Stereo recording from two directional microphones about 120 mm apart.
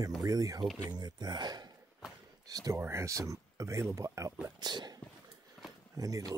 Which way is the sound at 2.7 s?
20° right (ahead or behind).